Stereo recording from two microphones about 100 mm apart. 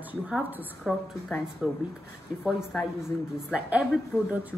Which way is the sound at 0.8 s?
Centre (ahead or behind).